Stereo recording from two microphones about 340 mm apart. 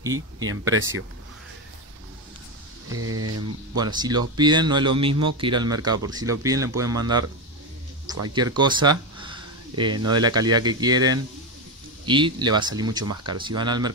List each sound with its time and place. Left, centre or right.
0.4 s speech: right
2.9 s speech: right
3.7 s speech: centre
8.3 s speech: centre
13.0 s speech: right
13.3 s speech: centre